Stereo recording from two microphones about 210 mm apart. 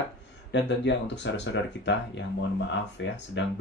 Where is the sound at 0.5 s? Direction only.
60° left (ahead or behind).